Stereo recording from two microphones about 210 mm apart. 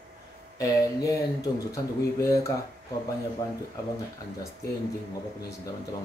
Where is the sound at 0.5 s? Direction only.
15° left (ahead or behind).